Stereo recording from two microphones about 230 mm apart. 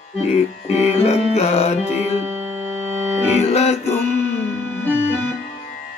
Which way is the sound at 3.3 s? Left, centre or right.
Left.